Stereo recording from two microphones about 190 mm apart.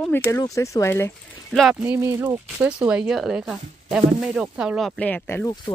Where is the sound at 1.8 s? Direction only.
15° right (ahead or behind); by 5.5 s 10° left (ahead or behind).